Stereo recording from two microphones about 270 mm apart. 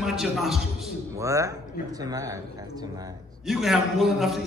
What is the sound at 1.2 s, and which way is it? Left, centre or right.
Speech, centre.